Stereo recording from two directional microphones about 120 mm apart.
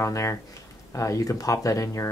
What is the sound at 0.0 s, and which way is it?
Speech, 25° left (ahead or behind).